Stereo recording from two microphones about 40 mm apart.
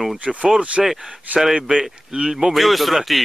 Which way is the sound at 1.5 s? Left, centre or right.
Right.